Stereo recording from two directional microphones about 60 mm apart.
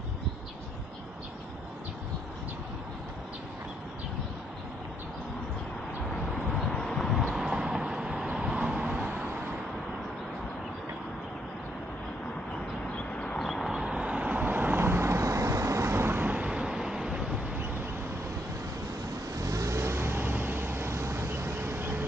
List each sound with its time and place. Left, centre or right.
6.3 s a sound: centre
7.3 s vehicle: centre
12.9 s a sound: centre
13.4 s vehicle: centre
13.8 s vehicle: centre; by 16.3 s right
16.3 s vehicle: centre
19.3 s vehicle: right